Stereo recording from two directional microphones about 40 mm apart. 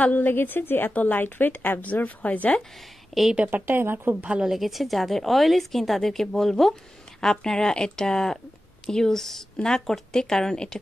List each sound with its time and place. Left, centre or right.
0.0 s speech: left
0.3 s a woman's voice: left
0.9 s speech: left
3.1 s a woman's voice: centre
3.4 s speech: right
4.5 s a woman's voice: centre